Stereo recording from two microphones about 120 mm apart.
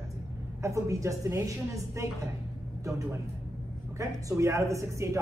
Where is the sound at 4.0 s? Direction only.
25° right (ahead or behind).